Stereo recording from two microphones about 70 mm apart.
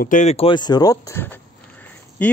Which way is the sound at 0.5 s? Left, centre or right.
Left.